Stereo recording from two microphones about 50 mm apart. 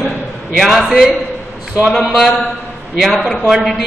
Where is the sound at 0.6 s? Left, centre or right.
Centre.